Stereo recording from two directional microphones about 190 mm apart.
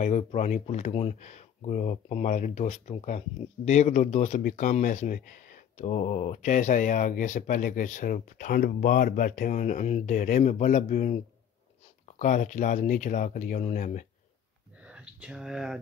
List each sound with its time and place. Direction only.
0.0 s speech: 40° left (ahead or behind)
12.2 s speech: 40° left (ahead or behind)
14.9 s speech: 5° right (ahead or behind)